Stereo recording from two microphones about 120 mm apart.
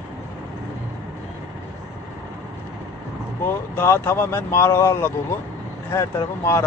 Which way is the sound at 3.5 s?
20° left (ahead or behind).